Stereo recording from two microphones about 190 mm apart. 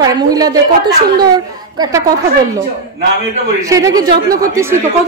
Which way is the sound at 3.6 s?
15° right (ahead or behind).